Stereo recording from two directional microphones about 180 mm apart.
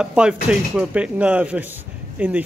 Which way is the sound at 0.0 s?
5° right (ahead or behind).